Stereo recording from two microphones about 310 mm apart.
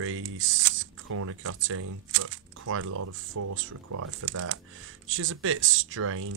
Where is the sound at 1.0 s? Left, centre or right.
Right.